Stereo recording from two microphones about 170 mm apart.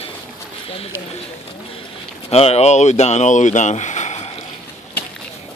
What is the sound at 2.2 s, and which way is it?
Speech, 35° left (ahead or behind).